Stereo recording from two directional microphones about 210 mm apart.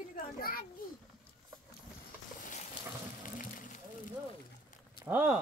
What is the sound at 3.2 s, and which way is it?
Water, 40° left (ahead or behind).